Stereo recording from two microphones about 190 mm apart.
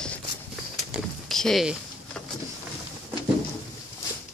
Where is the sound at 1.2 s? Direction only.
Centre (ahead or behind).